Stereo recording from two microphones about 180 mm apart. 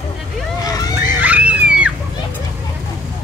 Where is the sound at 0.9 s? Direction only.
10° right (ahead or behind).